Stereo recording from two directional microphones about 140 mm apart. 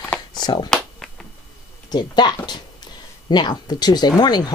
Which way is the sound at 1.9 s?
30° left (ahead or behind).